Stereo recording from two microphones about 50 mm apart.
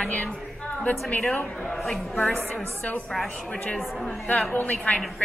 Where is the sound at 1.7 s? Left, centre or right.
Centre.